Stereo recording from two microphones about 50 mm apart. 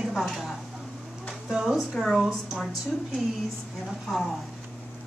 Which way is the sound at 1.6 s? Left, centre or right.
Centre.